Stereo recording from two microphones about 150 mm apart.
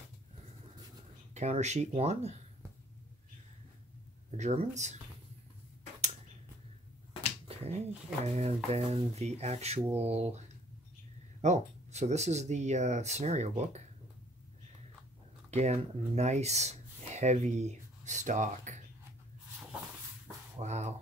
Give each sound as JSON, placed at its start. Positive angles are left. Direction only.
{"t": 1.3, "sound": "speech", "side_deg": -50}
{"t": 4.4, "sound": "speech", "side_deg": -50}
{"t": 7.4, "sound": "finger snapping", "side_deg": -45}
{"t": 8.4, "sound": "speech", "side_deg": -45}
{"t": 11.4, "sound": "speech", "side_deg": -50}
{"t": 15.5, "sound": "speech", "side_deg": -45}
{"t": 20.5, "sound": "speech", "side_deg": -50}